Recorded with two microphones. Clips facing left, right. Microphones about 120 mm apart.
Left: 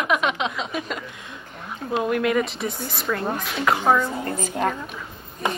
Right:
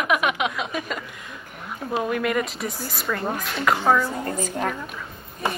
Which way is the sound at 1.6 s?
Centre (ahead or behind).